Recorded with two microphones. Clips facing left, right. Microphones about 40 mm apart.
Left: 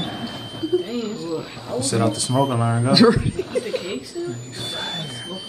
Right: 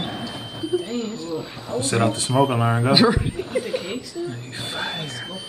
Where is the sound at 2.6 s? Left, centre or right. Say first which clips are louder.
Right 1 dB; right.